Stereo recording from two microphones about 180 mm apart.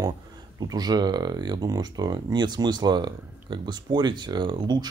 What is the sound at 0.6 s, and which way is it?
Speech, 20° right (ahead or behind).